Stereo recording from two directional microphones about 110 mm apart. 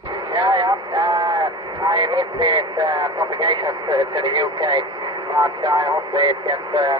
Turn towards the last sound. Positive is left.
turn(degrees=-40)  # may be behind; listen again after turning